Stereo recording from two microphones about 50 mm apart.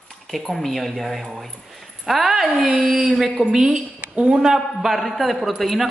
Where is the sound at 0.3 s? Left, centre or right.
Centre.